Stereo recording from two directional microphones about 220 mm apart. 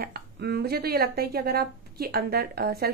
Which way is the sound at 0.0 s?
45° right (ahead or behind).